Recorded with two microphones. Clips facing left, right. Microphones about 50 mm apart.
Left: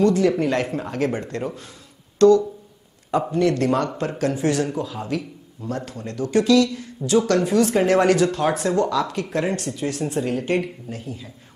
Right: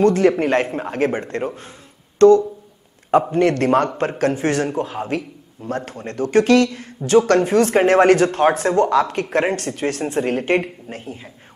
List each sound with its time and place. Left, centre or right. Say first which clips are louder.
0.0 s speech: right 3 dB; right